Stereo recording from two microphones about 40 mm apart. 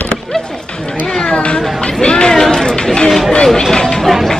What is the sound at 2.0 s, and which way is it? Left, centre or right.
Chatter, left.